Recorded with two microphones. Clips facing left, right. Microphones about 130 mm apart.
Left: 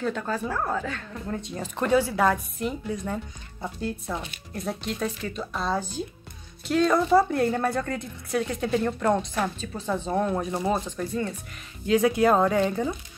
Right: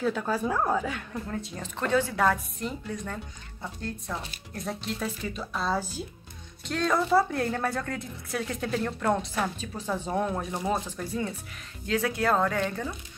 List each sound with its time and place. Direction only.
0.0 s speech: 5° right (ahead or behind)
1.3 s a woman's voice: 10° left (ahead or behind)
11.9 s a woman's voice: 15° left (ahead or behind)